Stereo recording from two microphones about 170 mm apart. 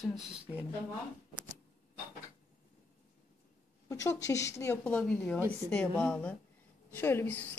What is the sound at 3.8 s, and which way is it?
Speech, 20° left (ahead or behind).